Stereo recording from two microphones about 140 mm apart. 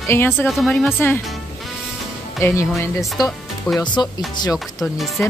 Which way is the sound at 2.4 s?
20° left (ahead or behind).